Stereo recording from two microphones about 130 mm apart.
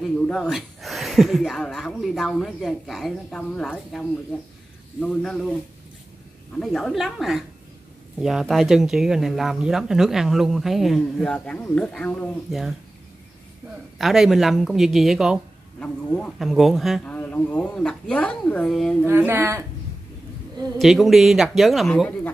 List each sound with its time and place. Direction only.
0.0 s speech: centre (ahead or behind)
6.6 s speech: 5° left (ahead or behind)
11.3 s speech: 10° left (ahead or behind)
12.4 s speech: centre (ahead or behind)
13.9 s speech: centre (ahead or behind)
17.0 s speech: 15° left (ahead or behind)
19.0 s speech: 15° right (ahead or behind)
20.8 s speech: centre (ahead or behind)